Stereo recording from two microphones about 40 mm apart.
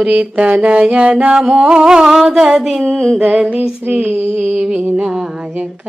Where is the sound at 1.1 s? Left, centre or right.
Centre.